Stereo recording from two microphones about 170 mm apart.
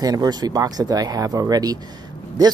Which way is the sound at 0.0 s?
20° right (ahead or behind).